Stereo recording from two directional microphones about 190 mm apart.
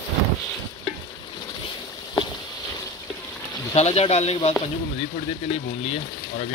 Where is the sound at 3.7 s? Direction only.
35° left (ahead or behind).